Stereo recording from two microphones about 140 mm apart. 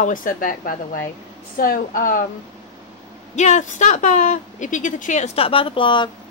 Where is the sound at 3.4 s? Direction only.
60° left (ahead or behind).